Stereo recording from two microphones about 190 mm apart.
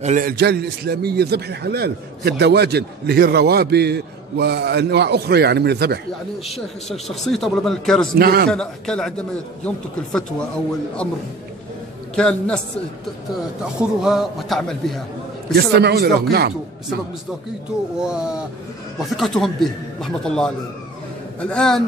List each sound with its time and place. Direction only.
0.0 s a man's voice: 45° right (ahead or behind); by 5.9 s 60° right (ahead or behind)
7.2 s speech: centre (ahead or behind)
8.2 s a man's voice: 55° right (ahead or behind)
8.5 s speech: 5° left (ahead or behind)
12.2 s speech: 5° left (ahead or behind)
13.7 s speech: centre (ahead or behind)
15.5 s a man's voice: 60° right (ahead or behind)
17.9 s speech: 5° right (ahead or behind)